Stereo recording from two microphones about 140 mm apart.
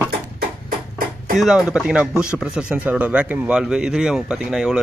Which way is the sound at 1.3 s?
5° right (ahead or behind).